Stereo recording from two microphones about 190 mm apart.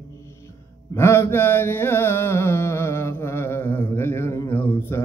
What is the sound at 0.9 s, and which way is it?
Mantra, 15° left (ahead or behind).